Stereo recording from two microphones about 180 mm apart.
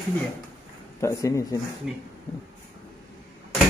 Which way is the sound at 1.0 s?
20° left (ahead or behind).